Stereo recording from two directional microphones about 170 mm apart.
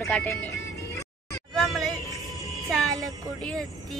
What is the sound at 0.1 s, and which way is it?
Speech, 10° left (ahead or behind).